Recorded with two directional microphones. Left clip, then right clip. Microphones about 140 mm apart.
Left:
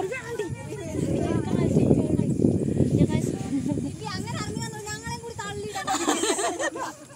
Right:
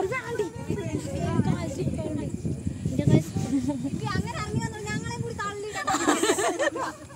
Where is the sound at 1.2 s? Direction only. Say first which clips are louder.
Left 3 dB; 20° right (ahead or behind).